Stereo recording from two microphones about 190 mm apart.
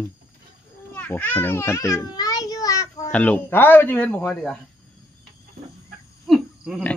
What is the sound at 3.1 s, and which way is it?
Speech, 10° left (ahead or behind).